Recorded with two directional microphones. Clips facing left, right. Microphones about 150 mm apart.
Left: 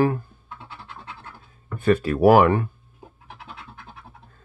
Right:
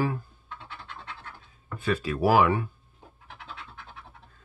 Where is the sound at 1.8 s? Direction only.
55° left (ahead or behind).